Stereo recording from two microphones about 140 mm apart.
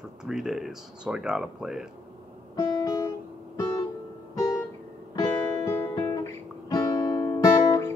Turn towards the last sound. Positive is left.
turn(degrees=20)  # may be behind; listen again after turning